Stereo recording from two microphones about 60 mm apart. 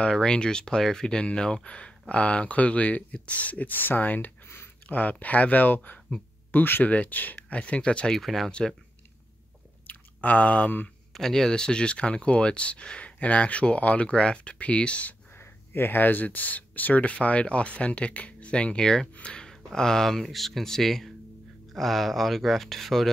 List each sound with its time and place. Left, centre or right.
0.0 s speech: centre
8.1 s speech: centre
8.5 s speech: centre
9.8 s speech: left
11.1 s speech: centre
15.3 s speech: left; by 23.1 s centre